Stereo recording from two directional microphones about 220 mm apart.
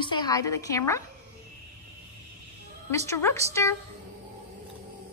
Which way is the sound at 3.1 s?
10° left (ahead or behind).